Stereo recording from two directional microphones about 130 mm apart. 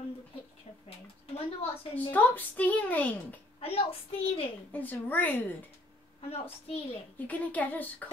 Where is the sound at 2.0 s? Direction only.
15° left (ahead or behind).